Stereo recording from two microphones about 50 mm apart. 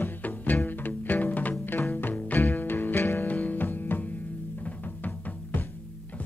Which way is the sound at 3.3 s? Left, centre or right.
Left.